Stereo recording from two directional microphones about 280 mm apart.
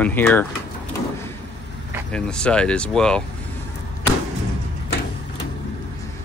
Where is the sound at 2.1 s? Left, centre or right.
Centre.